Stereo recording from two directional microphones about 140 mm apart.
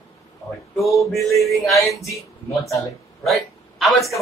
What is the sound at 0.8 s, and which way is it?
Mantra, centre (ahead or behind).